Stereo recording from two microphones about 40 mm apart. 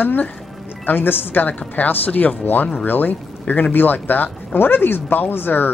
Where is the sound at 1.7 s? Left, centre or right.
Left.